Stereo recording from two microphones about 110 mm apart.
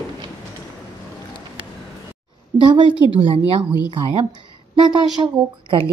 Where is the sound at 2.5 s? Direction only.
45° right (ahead or behind).